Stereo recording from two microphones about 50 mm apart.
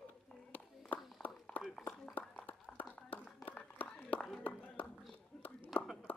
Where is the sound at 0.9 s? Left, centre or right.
Centre.